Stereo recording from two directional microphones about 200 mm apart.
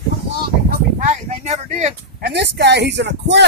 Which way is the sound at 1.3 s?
35° right (ahead or behind).